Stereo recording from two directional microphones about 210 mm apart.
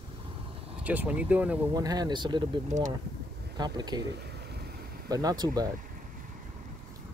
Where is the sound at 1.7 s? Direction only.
20° right (ahead or behind).